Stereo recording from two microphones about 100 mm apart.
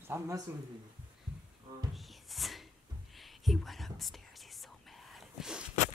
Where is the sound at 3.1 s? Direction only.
Centre (ahead or behind).